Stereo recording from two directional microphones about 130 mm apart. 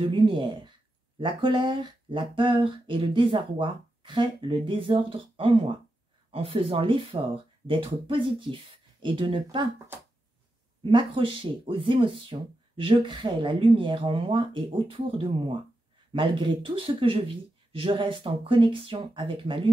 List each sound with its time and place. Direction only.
0.0 s speech: 40° right (ahead or behind)
10.8 s speech: 40° right (ahead or behind)